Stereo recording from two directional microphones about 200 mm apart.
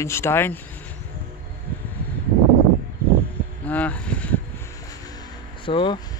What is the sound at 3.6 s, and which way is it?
Vehicle, 5° left (ahead or behind).